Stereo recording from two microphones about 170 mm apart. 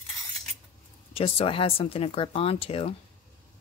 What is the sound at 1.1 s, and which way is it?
Speech, 35° left (ahead or behind).